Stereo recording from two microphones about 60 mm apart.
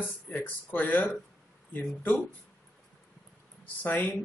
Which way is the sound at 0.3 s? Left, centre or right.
Left.